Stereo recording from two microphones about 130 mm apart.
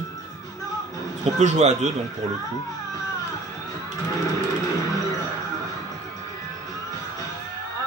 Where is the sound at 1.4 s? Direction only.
60° right (ahead or behind).